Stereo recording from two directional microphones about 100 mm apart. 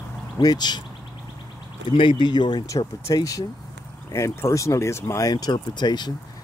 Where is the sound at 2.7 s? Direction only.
35° left (ahead or behind).